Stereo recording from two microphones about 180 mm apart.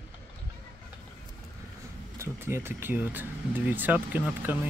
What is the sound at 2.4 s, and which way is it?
Speech, 15° right (ahead or behind).